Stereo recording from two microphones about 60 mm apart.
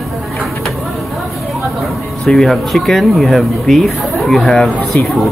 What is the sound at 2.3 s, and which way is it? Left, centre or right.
Speech, centre.